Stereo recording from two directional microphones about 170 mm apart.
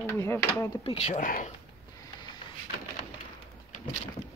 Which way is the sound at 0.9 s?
40° left (ahead or behind).